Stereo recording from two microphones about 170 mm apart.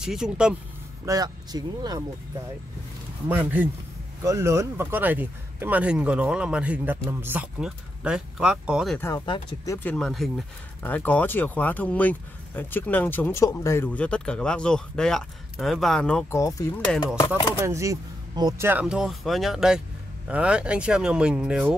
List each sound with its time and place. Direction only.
0.0 s speech: 5° right (ahead or behind)
1.0 s speech: 20° right (ahead or behind)
3.3 s speech: 10° right (ahead or behind)
8.9 s speech: 15° left (ahead or behind)
9.2 s speech: 25° left (ahead or behind)
9.8 s speech: 5° left (ahead or behind)
16.3 s speech: 20° left (ahead or behind)
17.3 s speech: 15° right (ahead or behind)
18.7 s speech: 5° right (ahead or behind)